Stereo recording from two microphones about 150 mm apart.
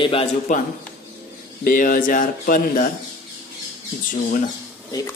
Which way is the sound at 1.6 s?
65° left (ahead or behind).